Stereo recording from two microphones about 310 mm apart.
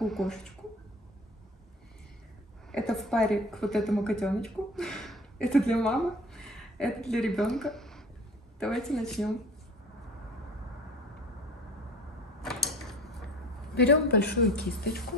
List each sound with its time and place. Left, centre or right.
0.0 s a woman's voice: centre
2.7 s a woman's voice: centre
12.4 s a sound: centre
13.7 s a woman's voice: left